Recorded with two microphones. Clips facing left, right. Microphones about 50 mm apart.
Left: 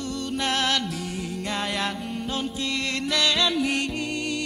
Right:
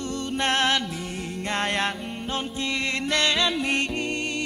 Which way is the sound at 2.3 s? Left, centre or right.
Right.